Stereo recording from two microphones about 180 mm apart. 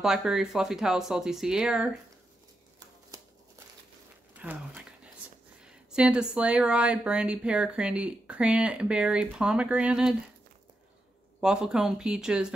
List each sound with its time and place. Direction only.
0.0 s speech: centre (ahead or behind)
3.1 s a sound: 20° right (ahead or behind)
4.4 s dog: 5° right (ahead or behind)
5.6 s speech: 5° right (ahead or behind)
11.4 s speech: 5° right (ahead or behind)